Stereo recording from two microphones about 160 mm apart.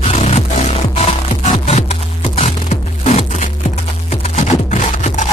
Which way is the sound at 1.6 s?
40° left (ahead or behind).